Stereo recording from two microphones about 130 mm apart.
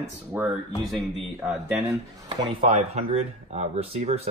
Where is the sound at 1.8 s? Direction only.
40° right (ahead or behind).